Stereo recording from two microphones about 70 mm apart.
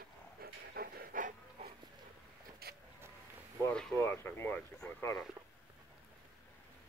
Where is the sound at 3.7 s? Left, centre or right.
Centre.